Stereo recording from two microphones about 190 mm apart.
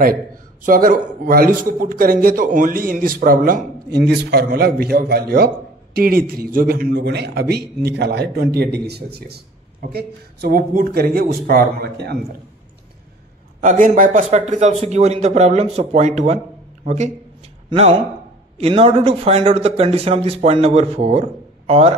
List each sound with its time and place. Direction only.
0.7 s a man's voice: 45° right (ahead or behind)
13.6 s speech: 45° right (ahead or behind)